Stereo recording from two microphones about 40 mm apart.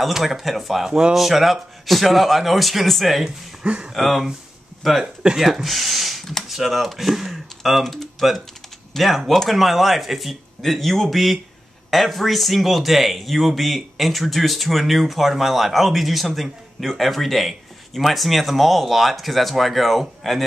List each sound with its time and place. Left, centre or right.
0.0 s speech: centre
0.8 s speech: centre
3.6 s speech: right
3.9 s speech: centre
5.0 s speech: right
5.4 s speech: centre